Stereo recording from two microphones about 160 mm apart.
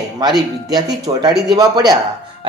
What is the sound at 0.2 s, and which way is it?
A man's voice, 25° right (ahead or behind).